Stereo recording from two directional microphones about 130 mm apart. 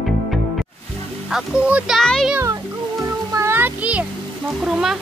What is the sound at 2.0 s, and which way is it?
Speech, 5° left (ahead or behind).